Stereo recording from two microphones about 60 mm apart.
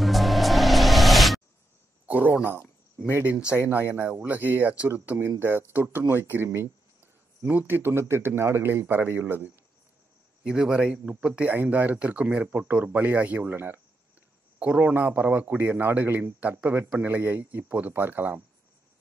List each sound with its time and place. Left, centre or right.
0.0 s music: centre
3.1 s speech: right
10.4 s speech: centre
11.4 s speech: right
14.6 s speech: right